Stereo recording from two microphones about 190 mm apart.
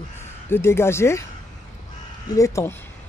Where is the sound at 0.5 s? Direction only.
15° left (ahead or behind).